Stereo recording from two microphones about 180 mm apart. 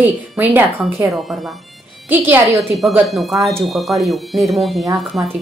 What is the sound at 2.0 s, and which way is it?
Speech, 10° right (ahead or behind).